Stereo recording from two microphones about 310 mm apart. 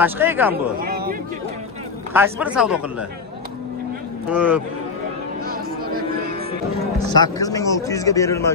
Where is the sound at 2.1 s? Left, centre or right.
Centre.